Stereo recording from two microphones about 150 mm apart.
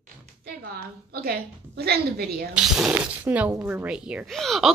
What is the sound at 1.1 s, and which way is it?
A woman's voice, 90° right.